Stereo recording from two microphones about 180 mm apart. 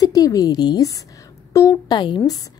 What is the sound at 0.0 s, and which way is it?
A woman's voice, 20° left (ahead or behind).